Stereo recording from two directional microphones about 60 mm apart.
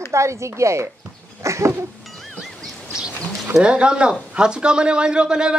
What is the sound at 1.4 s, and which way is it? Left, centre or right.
Cat, right.